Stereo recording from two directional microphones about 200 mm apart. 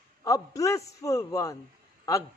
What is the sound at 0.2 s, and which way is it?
A woman's voice, 15° left (ahead or behind).